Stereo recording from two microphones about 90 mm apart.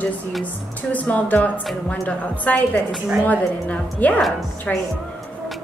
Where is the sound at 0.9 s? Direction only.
15° left (ahead or behind).